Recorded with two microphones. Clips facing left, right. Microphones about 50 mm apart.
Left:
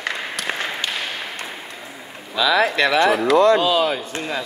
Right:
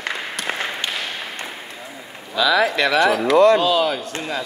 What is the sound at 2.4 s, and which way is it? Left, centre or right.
Speech, left.